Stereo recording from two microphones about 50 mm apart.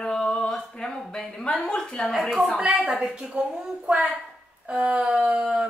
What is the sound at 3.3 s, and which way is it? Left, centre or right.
Speech, centre.